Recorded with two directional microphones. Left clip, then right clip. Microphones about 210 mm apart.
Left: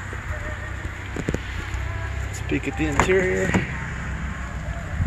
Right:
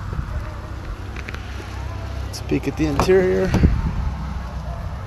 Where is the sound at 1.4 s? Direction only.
55° right (ahead or behind).